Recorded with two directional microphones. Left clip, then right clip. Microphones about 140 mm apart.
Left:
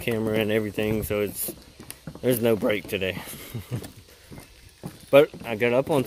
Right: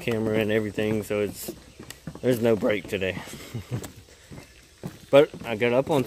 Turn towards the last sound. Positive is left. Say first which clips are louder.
# even
turn(degrees=10)  # may be behind; listen again after turning